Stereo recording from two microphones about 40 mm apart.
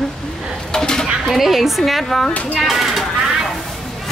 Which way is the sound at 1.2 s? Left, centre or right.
Centre.